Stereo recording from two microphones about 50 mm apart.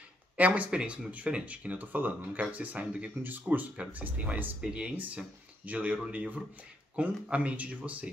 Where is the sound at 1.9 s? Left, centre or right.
Right.